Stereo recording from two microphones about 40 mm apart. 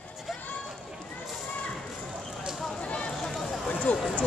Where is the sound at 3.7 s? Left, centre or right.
Left.